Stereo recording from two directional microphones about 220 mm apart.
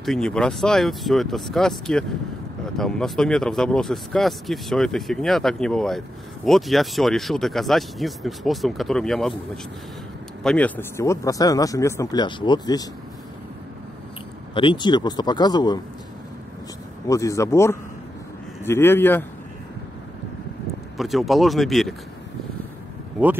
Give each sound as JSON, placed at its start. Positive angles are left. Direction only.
{"t": 0.0, "sound": "speech", "side_deg": 0}
{"t": 10.4, "sound": "speech", "side_deg": 5}
{"t": 14.5, "sound": "speech", "side_deg": 20}
{"t": 17.1, "sound": "speech", "side_deg": 15}
{"t": 21.0, "sound": "speech", "side_deg": 0}